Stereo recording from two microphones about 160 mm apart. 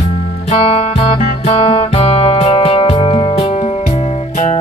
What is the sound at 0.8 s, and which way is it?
Music, 40° left (ahead or behind).